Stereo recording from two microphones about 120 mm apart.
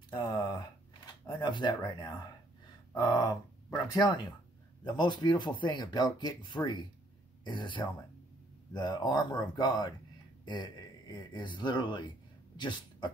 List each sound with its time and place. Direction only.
0.1 s speech: 40° left (ahead or behind)